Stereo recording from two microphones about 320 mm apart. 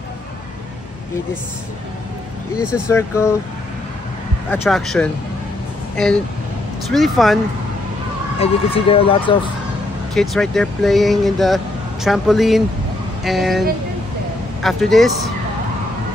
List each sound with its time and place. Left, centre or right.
2.9 s speech: centre
4.5 s speech: centre
6.9 s speech: centre
8.4 s speech: centre
10.1 s speech: centre